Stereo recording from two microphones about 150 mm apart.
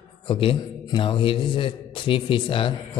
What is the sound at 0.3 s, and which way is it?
A man's voice, 35° left (ahead or behind).